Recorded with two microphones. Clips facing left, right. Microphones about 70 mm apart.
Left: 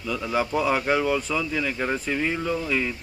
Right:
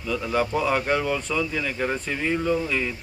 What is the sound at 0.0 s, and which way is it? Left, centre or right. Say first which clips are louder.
Speech: right 1 dB; centre.